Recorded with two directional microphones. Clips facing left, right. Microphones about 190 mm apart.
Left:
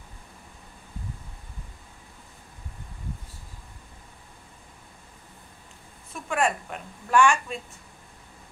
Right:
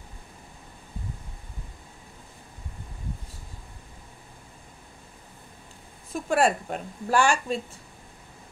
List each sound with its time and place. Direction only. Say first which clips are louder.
6.1 s a woman's voice: right 4 dB; 35° right (ahead or behind)